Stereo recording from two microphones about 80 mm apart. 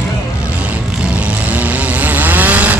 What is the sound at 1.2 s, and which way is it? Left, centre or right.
Vehicle, centre.